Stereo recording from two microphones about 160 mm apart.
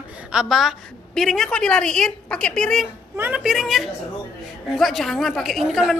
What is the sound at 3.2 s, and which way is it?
A man's voice, 10° right (ahead or behind).